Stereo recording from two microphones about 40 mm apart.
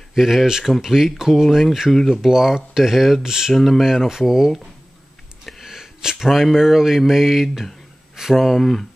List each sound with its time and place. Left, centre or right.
0.1 s speech: centre
1.9 s speech: centre
2.2 s speech: centre
3.5 s speech: centre
4.1 s speech: centre
5.6 s a sound: centre
6.2 s speech: centre
8.5 s a sound: centre